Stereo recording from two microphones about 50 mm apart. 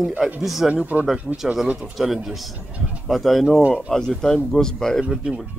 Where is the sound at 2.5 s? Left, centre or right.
Right.